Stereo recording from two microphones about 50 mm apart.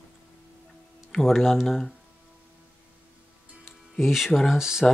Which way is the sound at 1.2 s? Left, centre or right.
Centre.